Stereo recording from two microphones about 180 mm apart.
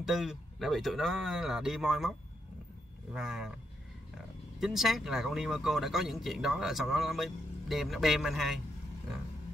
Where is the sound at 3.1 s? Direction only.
5° right (ahead or behind).